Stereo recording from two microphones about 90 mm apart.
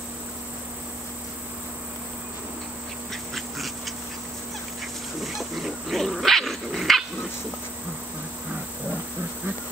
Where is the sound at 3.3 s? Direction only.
Centre (ahead or behind).